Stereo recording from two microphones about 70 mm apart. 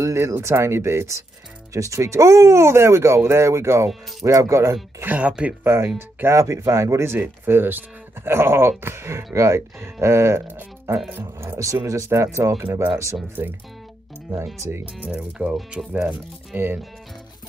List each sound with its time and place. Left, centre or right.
0.0 s speech: right
4.2 s speech: right
5.0 s speech: centre
5.6 s speech: right
11.6 s speech: right
13.4 s speech: right
14.3 s speech: right
15.0 s speech: centre
16.5 s speech: right